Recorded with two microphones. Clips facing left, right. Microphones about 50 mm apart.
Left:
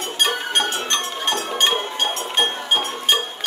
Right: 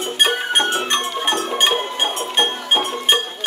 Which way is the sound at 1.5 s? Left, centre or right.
Centre.